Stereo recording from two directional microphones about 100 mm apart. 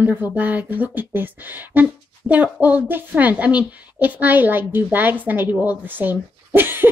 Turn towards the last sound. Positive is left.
turn(degrees=-20)  # may be behind; listen again after turning